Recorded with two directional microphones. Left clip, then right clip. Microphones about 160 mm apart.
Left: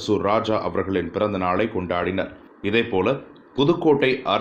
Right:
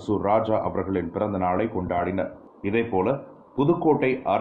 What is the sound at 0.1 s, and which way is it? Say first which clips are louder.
Speech: left 1 dB; 15° left (ahead or behind).